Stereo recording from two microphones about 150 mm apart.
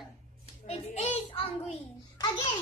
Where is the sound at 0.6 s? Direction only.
40° left (ahead or behind).